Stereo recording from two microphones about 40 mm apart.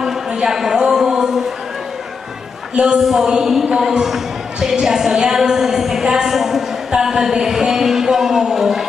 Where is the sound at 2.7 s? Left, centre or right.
Right.